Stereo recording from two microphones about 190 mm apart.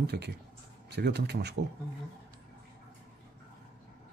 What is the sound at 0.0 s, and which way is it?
Speech, 60° right (ahead or behind).